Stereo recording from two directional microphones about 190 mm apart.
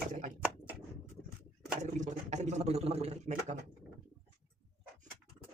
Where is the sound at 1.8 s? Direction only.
40° right (ahead or behind).